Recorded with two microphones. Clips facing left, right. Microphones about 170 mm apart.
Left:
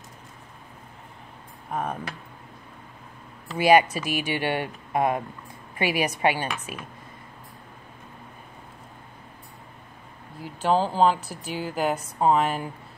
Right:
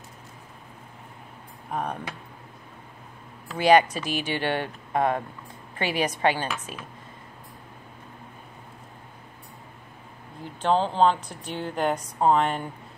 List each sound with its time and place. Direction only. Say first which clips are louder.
1.7 s speech: left 1 dB; centre (ahead or behind)
3.5 s speech: even; 10° left (ahead or behind)
10.4 s a woman's voice: left 1 dB; 5° left (ahead or behind)